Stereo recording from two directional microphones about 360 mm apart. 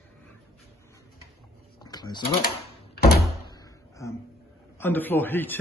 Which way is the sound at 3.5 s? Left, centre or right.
Centre.